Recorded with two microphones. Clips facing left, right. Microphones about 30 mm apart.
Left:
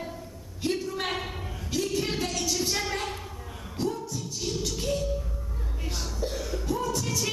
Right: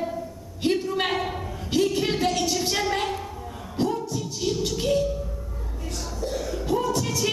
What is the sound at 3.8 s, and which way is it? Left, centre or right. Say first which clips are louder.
Music: right 5 dB; right.